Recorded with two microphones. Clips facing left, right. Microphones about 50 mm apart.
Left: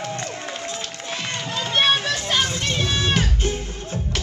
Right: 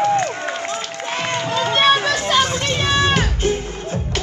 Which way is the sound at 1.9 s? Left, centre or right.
Right.